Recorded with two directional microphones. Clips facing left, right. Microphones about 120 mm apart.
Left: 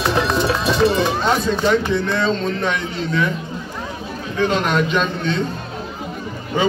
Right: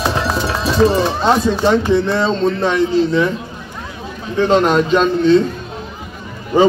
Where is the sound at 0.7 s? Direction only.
35° right (ahead or behind).